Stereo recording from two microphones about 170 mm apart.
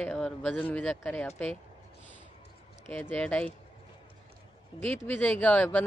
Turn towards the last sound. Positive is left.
turn(degrees=10)  # may be behind; listen again after turning